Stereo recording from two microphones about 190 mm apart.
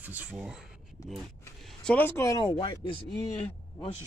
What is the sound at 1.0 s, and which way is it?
Speech, 20° left (ahead or behind).